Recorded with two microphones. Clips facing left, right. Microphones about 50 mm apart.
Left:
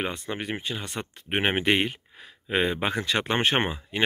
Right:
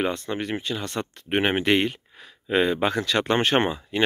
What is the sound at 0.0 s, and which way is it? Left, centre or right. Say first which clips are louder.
Speech: right 4 dB; left.